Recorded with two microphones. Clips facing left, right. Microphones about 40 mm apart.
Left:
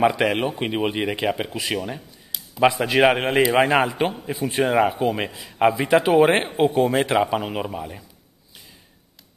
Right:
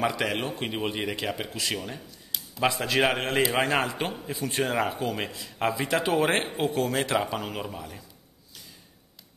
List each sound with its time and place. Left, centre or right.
0.0 s a man's voice: left